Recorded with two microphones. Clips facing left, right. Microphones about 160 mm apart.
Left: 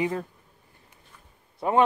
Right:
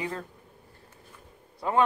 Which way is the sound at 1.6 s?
20° left (ahead or behind).